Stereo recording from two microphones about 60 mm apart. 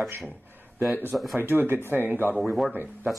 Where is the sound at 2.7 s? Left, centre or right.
Right.